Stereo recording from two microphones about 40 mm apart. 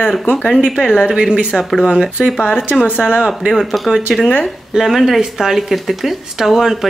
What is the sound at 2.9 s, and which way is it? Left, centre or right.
Speech, right.